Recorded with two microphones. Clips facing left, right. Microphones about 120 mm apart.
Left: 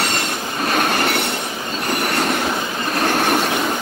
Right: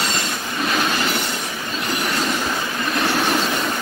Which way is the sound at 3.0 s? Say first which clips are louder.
Left 3 dB; 50° left (ahead or behind).